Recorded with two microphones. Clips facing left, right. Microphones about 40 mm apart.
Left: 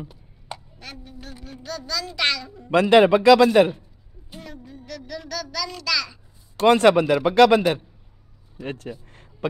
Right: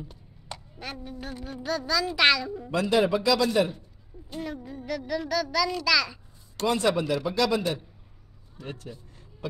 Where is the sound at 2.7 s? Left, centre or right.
Left.